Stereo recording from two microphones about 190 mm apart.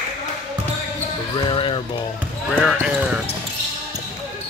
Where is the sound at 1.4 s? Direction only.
25° left (ahead or behind).